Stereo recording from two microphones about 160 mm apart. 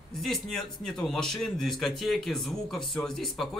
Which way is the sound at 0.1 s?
Centre (ahead or behind).